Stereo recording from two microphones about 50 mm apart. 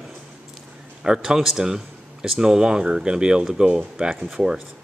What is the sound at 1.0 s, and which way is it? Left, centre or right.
Speech, centre.